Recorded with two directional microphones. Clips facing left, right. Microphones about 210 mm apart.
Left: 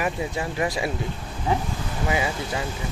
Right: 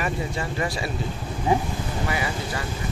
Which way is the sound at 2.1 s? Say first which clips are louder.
Left 6 dB; 20° left (ahead or behind).